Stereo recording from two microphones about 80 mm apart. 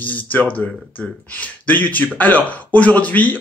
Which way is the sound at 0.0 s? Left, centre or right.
Left.